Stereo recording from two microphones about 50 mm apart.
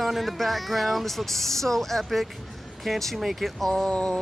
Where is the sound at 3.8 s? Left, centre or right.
Centre.